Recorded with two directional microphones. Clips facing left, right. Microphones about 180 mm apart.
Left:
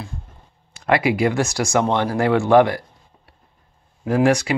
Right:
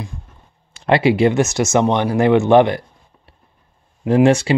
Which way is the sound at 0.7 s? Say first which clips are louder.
Right 4 dB; 25° right (ahead or behind).